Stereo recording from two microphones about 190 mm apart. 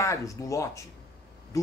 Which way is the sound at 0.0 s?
15° left (ahead or behind).